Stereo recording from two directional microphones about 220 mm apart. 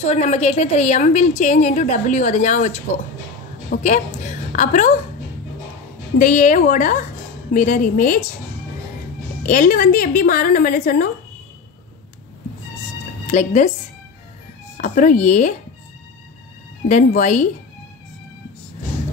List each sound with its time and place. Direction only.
0.0 s a woman's voice: 30° left (ahead or behind)
6.1 s a woman's voice: 35° left (ahead or behind)
9.5 s a woman's voice: 35° left (ahead or behind)
13.3 s a woman's voice: 35° left (ahead or behind)
14.8 s a woman's voice: 35° left (ahead or behind)
16.8 s a woman's voice: 35° left (ahead or behind)